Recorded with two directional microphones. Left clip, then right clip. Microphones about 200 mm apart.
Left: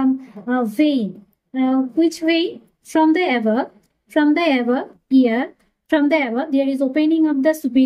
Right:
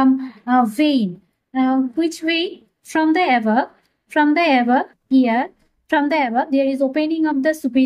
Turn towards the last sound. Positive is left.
turn(degrees=-30)  # may be behind; listen again after turning